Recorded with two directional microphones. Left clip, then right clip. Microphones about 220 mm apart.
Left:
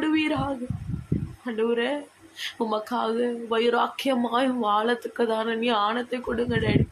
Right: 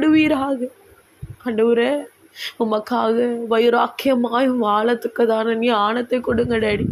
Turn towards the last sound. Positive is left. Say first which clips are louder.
# right 7 dB
turn(degrees=-25)  # may be behind; listen again after turning